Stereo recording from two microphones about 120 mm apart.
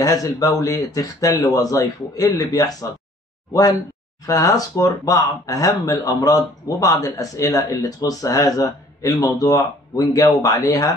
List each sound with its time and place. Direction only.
0.0 s speech: 30° left (ahead or behind)
4.3 s speech: 30° left (ahead or behind)